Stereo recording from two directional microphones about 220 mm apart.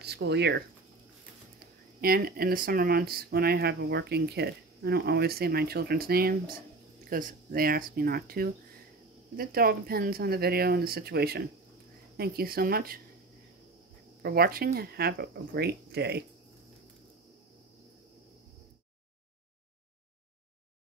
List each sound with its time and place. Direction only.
0.0 s speech: 50° right (ahead or behind)
2.0 s speech: 45° right (ahead or behind)
14.2 s speech: 45° right (ahead or behind)